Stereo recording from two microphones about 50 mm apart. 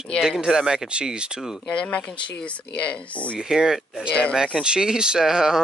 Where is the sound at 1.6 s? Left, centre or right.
Left.